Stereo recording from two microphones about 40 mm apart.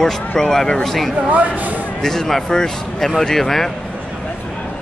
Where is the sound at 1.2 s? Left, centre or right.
Right.